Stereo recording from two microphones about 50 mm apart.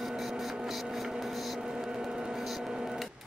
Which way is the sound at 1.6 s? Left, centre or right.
Centre.